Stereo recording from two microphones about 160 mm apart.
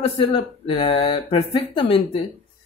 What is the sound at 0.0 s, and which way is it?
Speech, 35° left (ahead or behind).